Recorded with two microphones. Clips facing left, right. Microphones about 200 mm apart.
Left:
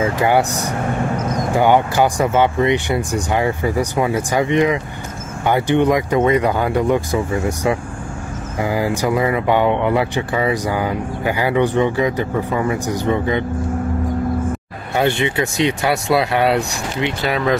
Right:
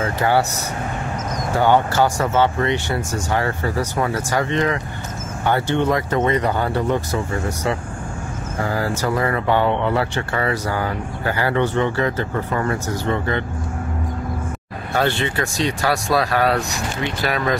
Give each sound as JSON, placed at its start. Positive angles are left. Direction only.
{"t": 0.0, "sound": "speech", "side_deg": 15}
{"t": 15.0, "sound": "speech", "side_deg": 15}